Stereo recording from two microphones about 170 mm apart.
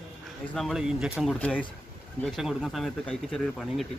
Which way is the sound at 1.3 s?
10° left (ahead or behind).